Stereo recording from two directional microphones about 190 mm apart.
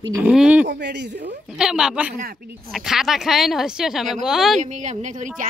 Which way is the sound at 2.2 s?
50° right (ahead or behind).